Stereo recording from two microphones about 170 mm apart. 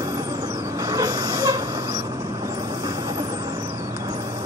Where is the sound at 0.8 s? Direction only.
20° right (ahead or behind).